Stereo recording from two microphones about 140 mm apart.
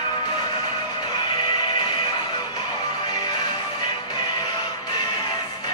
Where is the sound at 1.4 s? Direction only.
35° left (ahead or behind).